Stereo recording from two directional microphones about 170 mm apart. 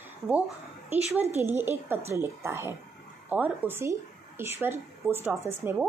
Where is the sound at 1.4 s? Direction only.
15° right (ahead or behind).